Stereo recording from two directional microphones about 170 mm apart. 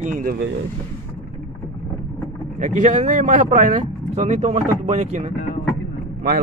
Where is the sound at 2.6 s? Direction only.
45° right (ahead or behind).